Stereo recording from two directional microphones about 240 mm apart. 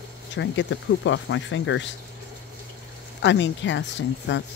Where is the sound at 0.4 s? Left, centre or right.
Left.